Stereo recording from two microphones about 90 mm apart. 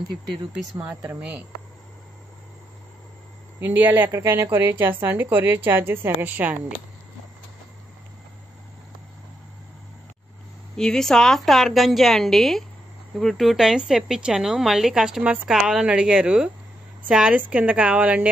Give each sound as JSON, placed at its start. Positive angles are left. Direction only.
{"t": 0.7, "sound": "a woman's voice", "side_deg": -15}
{"t": 3.5, "sound": "a woman's voice", "side_deg": -20}
{"t": 10.8, "sound": "a woman's voice", "side_deg": 5}